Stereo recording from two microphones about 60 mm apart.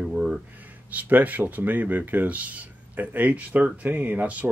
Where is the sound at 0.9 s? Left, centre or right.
Right.